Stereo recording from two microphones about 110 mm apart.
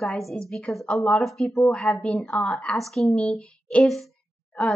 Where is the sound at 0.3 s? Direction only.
5° left (ahead or behind).